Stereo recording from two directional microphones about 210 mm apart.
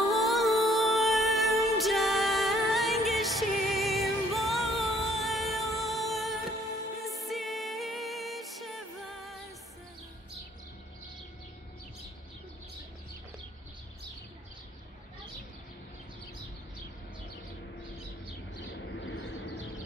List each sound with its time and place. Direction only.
0.1 s music: centre (ahead or behind)
18.7 s bird: 60° left (ahead or behind)